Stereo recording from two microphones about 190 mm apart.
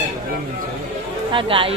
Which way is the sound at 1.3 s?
30° right (ahead or behind).